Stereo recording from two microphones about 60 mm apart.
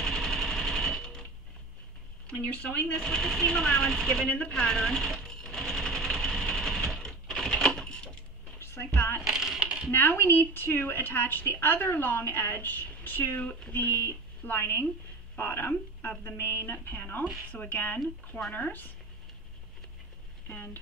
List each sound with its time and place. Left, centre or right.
0.0 s sewing machine: centre
2.4 s a woman's voice: left
2.9 s speech: centre
4.5 s sewing machine: centre
8.5 s a woman's voice: left
9.2 s a sound: centre
9.8 s a woman's voice: left
14.6 s a woman's voice: left